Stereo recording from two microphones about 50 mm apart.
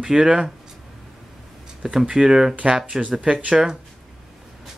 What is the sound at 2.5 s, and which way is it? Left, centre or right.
Speech, right.